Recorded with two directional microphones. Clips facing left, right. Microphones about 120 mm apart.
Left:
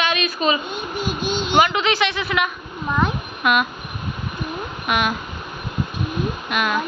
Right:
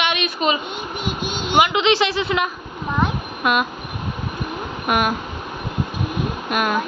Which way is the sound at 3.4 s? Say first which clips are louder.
Even; 30° right (ahead or behind).